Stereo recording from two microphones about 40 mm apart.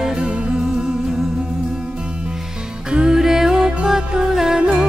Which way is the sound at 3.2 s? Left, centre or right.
Centre.